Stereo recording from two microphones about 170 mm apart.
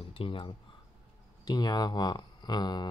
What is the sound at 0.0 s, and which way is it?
Speech, 35° left (ahead or behind).